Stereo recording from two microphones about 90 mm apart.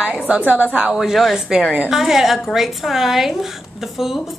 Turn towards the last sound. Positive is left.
turn(degrees=-5)  # may be behind; listen again after turning